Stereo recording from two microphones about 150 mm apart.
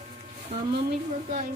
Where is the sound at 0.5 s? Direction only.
35° right (ahead or behind).